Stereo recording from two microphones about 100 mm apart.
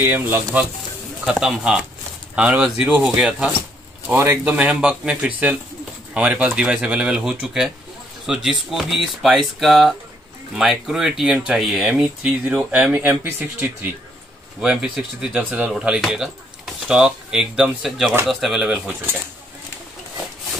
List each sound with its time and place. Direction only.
0.0 s a man's voice: 20° right (ahead or behind)
1.2 s a man's voice: 5° right (ahead or behind); by 13.8 s 20° right (ahead or behind)
14.6 s speech: 10° right (ahead or behind)